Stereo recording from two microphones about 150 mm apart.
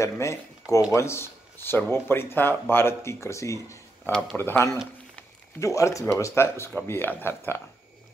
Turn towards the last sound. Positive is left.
turn(degrees=15)  # may be behind; listen again after turning